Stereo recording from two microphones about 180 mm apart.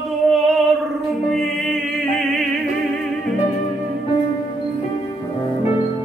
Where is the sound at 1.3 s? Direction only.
Centre (ahead or behind).